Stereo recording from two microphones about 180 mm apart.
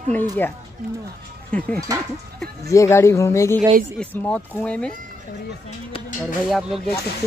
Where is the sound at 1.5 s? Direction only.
5° left (ahead or behind).